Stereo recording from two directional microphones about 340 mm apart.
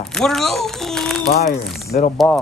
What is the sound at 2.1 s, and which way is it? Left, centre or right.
Speech, centre.